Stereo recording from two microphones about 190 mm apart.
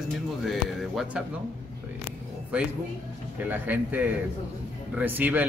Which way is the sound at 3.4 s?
10° right (ahead or behind).